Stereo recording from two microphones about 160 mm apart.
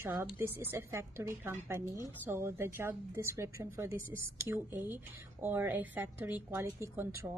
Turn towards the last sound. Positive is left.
turn(degrees=-15)  # may be behind; listen again after turning